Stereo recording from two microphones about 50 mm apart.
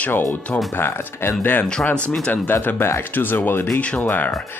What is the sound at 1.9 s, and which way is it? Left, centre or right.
Speech, left.